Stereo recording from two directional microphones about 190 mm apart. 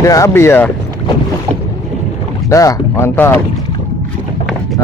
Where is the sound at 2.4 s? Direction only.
15° left (ahead or behind).